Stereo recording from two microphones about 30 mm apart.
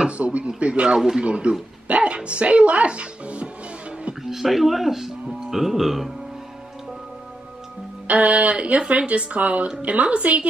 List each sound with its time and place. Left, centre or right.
0.2 s speech: right
4.2 s speech: centre
8.1 s speech: right